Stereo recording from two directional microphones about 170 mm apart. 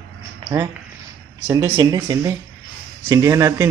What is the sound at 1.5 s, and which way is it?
A man's voice, 20° right (ahead or behind).